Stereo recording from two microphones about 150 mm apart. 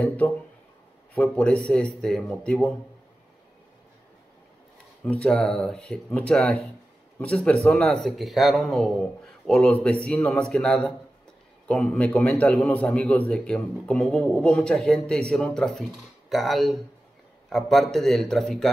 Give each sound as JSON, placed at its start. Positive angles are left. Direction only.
{"t": 1.1, "sound": "a man's voice", "side_deg": 10}
{"t": 5.0, "sound": "a man's voice", "side_deg": 10}